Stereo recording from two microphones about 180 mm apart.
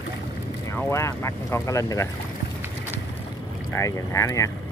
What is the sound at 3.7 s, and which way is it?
Speech, 15° left (ahead or behind).